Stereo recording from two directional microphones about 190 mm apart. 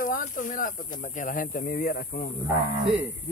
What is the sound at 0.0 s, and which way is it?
Speech, 45° left (ahead or behind).